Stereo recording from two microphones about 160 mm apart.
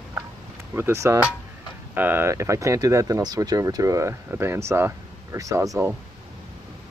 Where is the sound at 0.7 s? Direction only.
15° right (ahead or behind).